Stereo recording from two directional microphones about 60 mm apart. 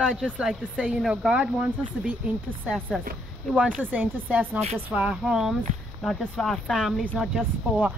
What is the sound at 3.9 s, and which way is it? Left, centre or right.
Speech, right.